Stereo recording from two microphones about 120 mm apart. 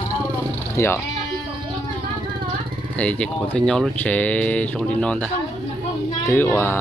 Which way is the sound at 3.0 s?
10° left (ahead or behind).